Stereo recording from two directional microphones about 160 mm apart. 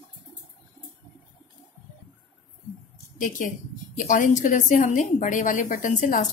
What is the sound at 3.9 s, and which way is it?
A woman's voice, 55° left (ahead or behind).